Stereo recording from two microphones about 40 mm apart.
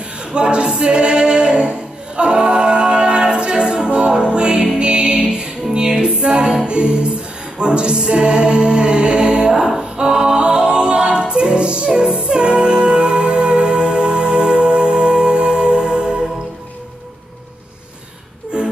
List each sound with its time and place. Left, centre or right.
0.2 s a capella: right
4.1 s music: right
9.5 s a capella: centre
11.9 s music: right
18.5 s music: right